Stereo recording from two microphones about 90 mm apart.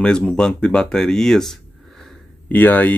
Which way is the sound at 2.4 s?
20° left (ahead or behind).